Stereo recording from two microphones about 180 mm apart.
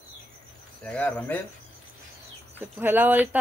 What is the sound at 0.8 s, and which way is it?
Speech, 5° left (ahead or behind).